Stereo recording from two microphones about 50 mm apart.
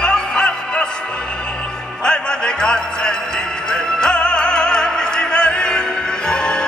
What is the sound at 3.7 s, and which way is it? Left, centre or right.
Opera, centre.